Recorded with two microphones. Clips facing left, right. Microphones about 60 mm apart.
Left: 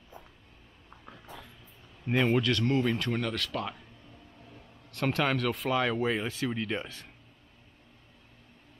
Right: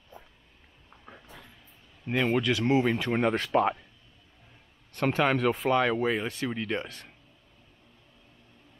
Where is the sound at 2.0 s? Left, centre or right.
Centre.